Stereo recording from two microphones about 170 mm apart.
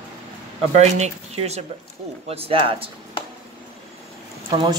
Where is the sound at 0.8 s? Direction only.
40° right (ahead or behind).